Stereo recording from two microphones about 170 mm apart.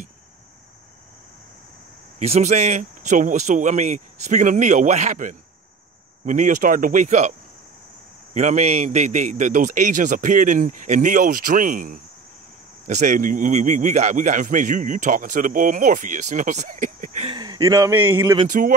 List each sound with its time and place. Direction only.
2.1 s a man's voice: 40° right (ahead or behind)
17.3 s a man's voice: 25° right (ahead or behind)